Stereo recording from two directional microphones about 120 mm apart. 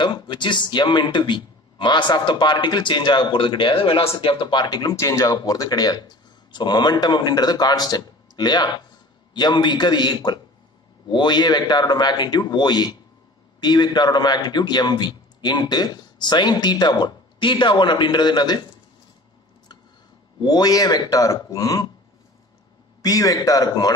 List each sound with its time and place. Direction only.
0.0 s speech: 40° left (ahead or behind)
20.4 s speech: 35° left (ahead or behind)
23.0 s speech: 30° left (ahead or behind)